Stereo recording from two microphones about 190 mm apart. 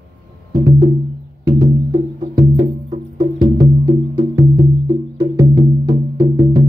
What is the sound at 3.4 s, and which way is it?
Music, 20° right (ahead or behind).